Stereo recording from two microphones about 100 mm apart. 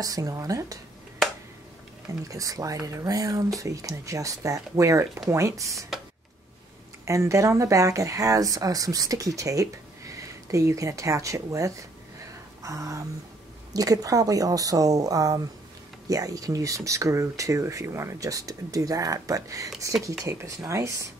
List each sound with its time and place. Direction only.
0.0 s speech: 35° right (ahead or behind)
2.2 s speech: 35° right (ahead or behind)
7.1 s speech: 30° right (ahead or behind)